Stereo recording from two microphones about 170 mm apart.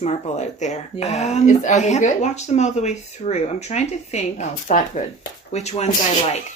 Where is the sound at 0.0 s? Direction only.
45° left (ahead or behind).